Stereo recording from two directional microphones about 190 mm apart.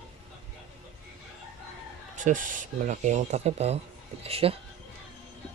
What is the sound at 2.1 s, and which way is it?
Speech, 40° right (ahead or behind).